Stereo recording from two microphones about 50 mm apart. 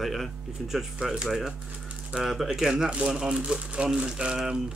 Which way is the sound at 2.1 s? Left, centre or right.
Centre.